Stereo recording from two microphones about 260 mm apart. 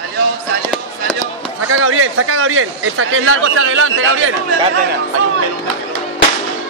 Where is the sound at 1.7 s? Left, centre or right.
Right.